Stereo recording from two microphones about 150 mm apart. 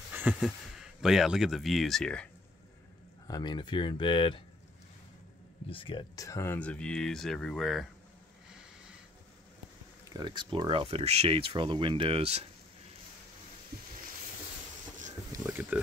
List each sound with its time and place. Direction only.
0.1 s speech: 10° right (ahead or behind)
3.3 s speech: 30° left (ahead or behind)
5.7 s speech: 35° left (ahead or behind)
6.1 s speech: 20° left (ahead or behind); by 7.9 s centre (ahead or behind)
10.1 s speech: 30° right (ahead or behind)
15.3 s a sound: 15° right (ahead or behind)